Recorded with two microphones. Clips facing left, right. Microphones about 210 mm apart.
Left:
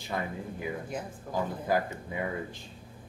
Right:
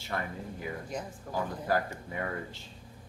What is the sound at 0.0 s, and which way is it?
Speech, 15° left (ahead or behind).